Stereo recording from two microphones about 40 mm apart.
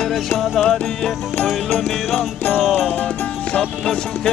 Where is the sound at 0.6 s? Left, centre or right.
Centre.